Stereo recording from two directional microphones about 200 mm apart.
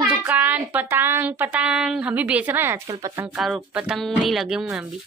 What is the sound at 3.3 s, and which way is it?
Speech, centre (ahead or behind).